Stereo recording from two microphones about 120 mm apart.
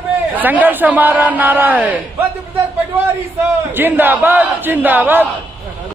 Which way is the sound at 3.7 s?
15° right (ahead or behind).